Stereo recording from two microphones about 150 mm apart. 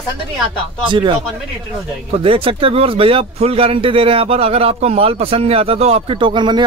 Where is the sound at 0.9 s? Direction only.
35° right (ahead or behind).